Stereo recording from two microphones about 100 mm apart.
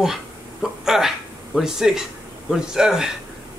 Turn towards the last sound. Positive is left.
turn(degrees=-5)  # may be behind; listen again after turning